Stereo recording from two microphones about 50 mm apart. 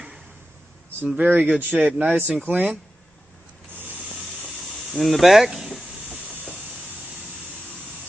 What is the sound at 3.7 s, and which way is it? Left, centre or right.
Spray, right.